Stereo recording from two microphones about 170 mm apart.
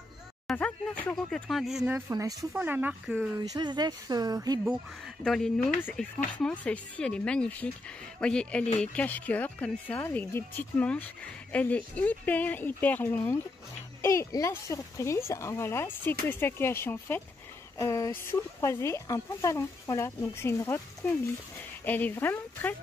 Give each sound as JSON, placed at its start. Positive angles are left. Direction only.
{"t": 0.5, "sound": "speech", "side_deg": 5}
{"t": 3.5, "sound": "speech", "side_deg": -25}
{"t": 4.6, "sound": "speech", "side_deg": 0}